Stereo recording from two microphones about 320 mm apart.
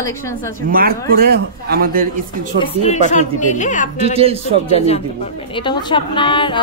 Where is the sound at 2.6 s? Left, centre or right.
Left.